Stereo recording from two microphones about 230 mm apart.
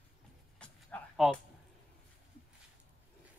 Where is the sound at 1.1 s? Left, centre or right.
Centre.